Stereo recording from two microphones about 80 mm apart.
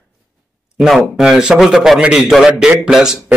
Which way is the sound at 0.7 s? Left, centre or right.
Centre.